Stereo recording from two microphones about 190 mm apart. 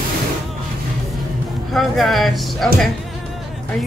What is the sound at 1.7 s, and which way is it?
Speech, centre (ahead or behind).